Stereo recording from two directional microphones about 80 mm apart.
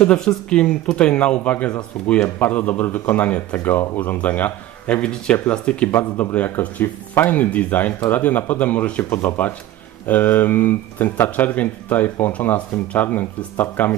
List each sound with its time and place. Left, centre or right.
0.0 s speech: centre